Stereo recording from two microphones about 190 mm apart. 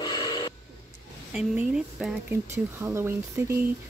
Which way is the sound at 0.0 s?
20° left (ahead or behind).